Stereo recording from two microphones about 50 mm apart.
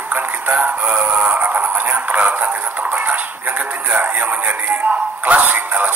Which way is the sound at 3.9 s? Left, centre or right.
Right.